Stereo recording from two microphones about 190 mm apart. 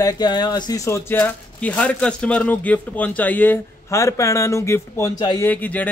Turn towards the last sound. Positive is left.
turn(degrees=10)  # may be behind; listen again after turning